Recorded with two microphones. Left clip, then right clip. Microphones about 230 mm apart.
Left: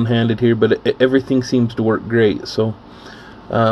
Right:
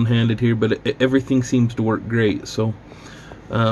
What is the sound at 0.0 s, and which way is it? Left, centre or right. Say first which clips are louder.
Speech: left 5 dB; centre.